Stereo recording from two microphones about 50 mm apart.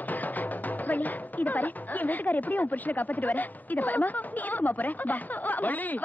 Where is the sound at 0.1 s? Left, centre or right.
Left.